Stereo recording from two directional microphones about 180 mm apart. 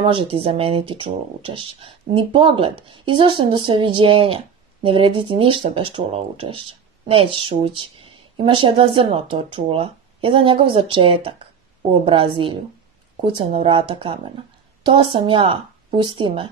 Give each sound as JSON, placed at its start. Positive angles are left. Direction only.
{"t": 0.0, "sound": "speech", "side_deg": -30}